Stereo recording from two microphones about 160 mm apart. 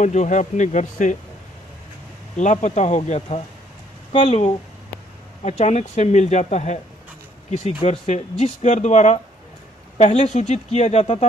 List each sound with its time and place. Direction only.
0.0 s speech: 50° left (ahead or behind)
2.3 s speech: 50° left (ahead or behind)